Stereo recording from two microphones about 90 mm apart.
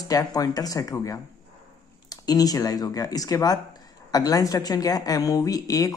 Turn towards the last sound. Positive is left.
turn(degrees=40)  # may be behind; listen again after turning